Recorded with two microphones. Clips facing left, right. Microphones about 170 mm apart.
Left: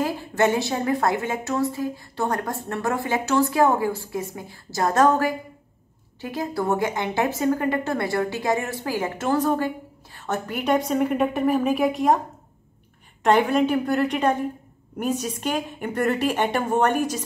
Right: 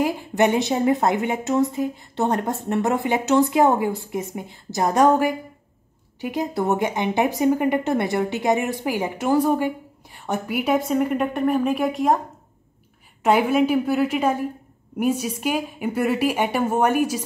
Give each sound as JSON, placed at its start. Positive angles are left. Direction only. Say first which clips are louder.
{"t": 0.0, "sound": "a woman's voice", "louder": "right 2 dB", "side_deg": -15}
{"t": 13.2, "sound": "a woman's voice", "louder": "right 1 dB", "side_deg": -5}